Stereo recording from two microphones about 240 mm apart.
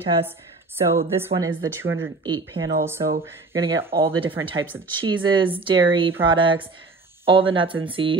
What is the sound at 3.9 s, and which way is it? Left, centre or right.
Speech, right.